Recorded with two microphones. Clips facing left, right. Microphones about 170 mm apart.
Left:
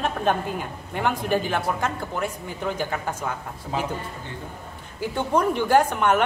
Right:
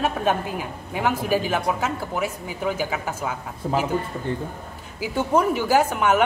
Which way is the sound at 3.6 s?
45° right (ahead or behind).